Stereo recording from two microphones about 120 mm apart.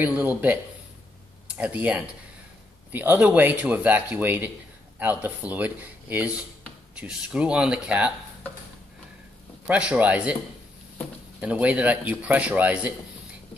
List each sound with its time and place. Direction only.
0.0 s a man's voice: 15° right (ahead or behind)
9.7 s a man's voice: 10° right (ahead or behind)
11.3 s a man's voice: 10° right (ahead or behind)